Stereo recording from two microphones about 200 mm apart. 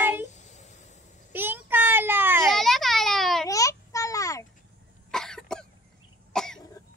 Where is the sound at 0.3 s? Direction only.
35° left (ahead or behind).